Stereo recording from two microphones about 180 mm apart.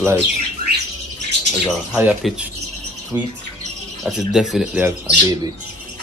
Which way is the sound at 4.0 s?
5° right (ahead or behind).